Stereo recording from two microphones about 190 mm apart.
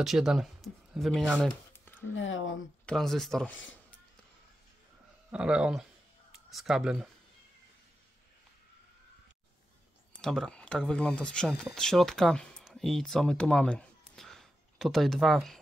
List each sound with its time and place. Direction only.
0.0 s speech: centre (ahead or behind)
2.1 s speech: 90° left
2.9 s speech: centre (ahead or behind)
5.3 s speech: 5° right (ahead or behind)
10.1 s speech: centre (ahead or behind)